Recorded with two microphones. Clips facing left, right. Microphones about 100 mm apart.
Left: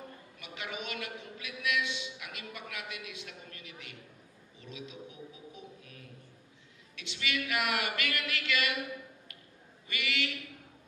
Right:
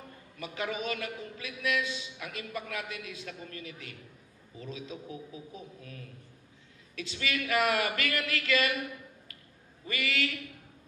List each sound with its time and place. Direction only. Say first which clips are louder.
0.4 s a man's voice: right 7 dB; 35° right (ahead or behind)
7.0 s speech: right 2 dB; 40° right (ahead or behind)
9.8 s speech: right 3 dB; 40° right (ahead or behind)